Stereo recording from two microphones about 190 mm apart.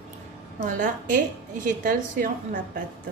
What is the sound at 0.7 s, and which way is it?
A woman's voice, 45° right (ahead or behind).